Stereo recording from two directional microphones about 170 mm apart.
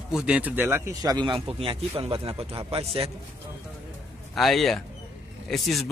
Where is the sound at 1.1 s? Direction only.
25° right (ahead or behind).